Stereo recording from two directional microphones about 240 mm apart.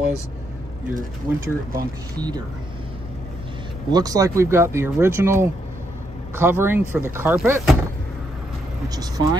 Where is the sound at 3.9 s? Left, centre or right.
Centre.